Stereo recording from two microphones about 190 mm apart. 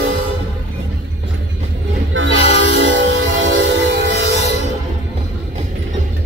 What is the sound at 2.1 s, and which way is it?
Train, 85° right.